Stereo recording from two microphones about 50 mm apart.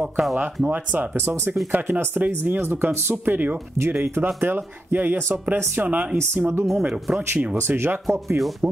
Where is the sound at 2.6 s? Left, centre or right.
Right.